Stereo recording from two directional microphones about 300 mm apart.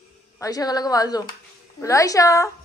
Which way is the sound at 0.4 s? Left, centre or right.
Centre.